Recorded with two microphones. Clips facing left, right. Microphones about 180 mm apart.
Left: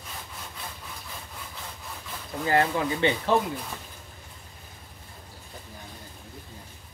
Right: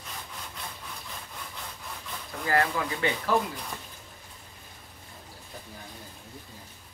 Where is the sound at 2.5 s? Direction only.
25° left (ahead or behind).